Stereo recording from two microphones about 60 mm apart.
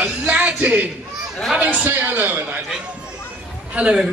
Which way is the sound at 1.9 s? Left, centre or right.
Right.